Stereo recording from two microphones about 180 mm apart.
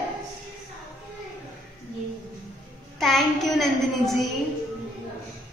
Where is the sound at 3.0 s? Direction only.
Centre (ahead or behind).